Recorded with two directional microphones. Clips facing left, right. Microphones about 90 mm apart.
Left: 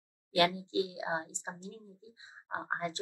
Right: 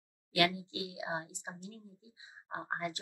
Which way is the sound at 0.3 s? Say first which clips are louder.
Left 3 dB; 30° left (ahead or behind).